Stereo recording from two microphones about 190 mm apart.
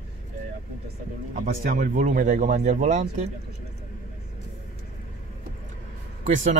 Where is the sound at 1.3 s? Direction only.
50° right (ahead or behind).